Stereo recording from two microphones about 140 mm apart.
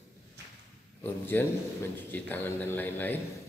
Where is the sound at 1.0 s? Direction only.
15° left (ahead or behind).